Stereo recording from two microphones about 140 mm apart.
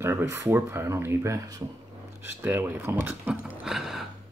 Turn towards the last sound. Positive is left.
turn(degrees=0)  # may be behind; listen again after turning